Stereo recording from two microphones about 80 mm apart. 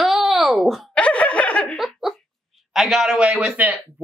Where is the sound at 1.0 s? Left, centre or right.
Centre.